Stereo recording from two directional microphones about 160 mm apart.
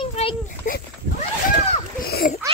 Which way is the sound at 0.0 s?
35° left (ahead or behind).